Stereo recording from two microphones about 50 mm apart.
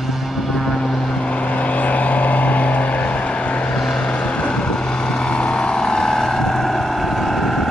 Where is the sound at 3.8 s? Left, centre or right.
Centre.